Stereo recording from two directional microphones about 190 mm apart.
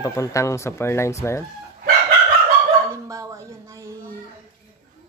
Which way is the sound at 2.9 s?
15° right (ahead or behind).